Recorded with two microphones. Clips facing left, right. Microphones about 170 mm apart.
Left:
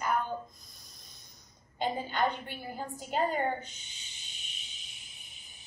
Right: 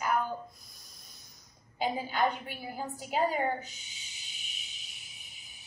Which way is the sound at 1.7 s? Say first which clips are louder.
Right 1 dB; 5° right (ahead or behind).